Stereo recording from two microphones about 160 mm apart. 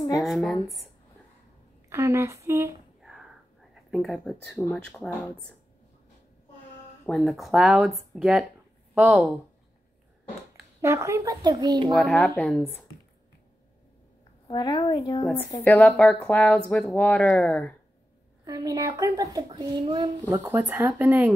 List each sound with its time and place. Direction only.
0.2 s speech: centre (ahead or behind)
1.9 s speech: 20° right (ahead or behind)
3.0 s a sound: 5° right (ahead or behind)
3.7 s speech: centre (ahead or behind)
7.1 s speech: centre (ahead or behind)
10.8 s a child's voice: 20° right (ahead or behind)
11.9 s speech: 5° left (ahead or behind)
14.5 s a woman's voice: 25° left (ahead or behind)
15.6 s speech: 10° left (ahead or behind)
18.4 s a child's voice: 25° right (ahead or behind)
20.2 s speech: 15° right (ahead or behind)